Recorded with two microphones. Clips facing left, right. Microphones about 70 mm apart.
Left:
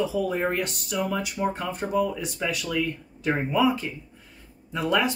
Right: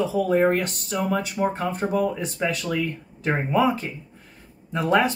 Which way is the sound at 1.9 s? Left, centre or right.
Right.